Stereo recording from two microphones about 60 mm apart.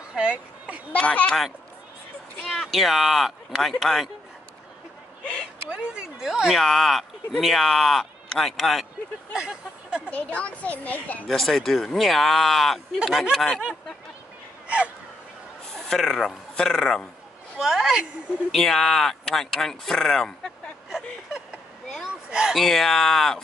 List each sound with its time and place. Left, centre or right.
0.1 s speech: centre
0.9 s a woman's voice: centre
2.4 s speech: centre
5.7 s speech: centre
6.5 s speech: centre
9.3 s speech: centre
10.0 s a woman's voice: left
11.2 s speech: centre
15.7 s speech: centre
17.6 s speech: centre
18.5 s speech: centre
22.3 s speech: centre
22.6 s speech: centre